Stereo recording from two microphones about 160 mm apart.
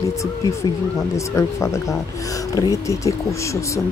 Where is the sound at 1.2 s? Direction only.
20° left (ahead or behind).